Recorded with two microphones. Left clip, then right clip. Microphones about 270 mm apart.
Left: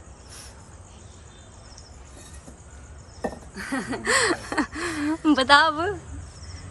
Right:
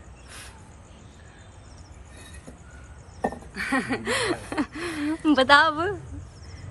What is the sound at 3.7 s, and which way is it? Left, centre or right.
Speech, centre.